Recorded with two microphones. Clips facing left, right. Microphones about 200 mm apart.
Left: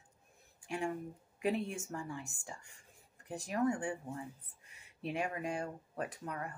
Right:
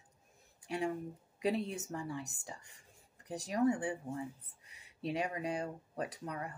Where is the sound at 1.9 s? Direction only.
35° right (ahead or behind).